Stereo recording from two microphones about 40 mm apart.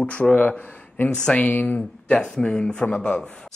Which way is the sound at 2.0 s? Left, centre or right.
Left.